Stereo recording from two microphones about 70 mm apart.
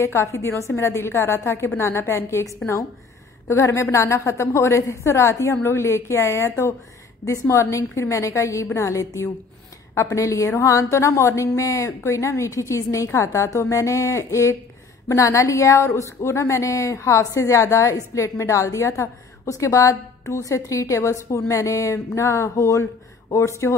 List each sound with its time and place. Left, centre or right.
0.0 s a woman's voice: left